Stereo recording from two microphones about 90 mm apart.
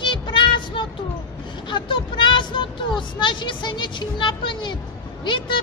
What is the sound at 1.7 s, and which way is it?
Speech, 65° left (ahead or behind).